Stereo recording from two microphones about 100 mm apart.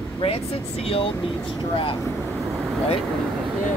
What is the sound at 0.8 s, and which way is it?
Speech, 70° left (ahead or behind).